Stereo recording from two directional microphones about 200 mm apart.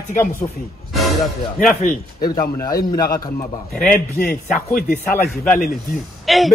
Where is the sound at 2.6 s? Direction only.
20° left (ahead or behind).